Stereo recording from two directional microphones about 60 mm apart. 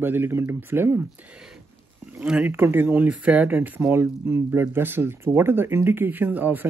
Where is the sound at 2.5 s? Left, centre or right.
Right.